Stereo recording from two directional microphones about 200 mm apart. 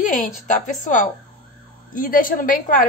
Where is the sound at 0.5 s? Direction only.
40° left (ahead or behind).